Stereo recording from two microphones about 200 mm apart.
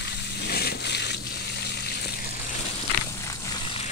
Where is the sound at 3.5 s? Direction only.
25° left (ahead or behind).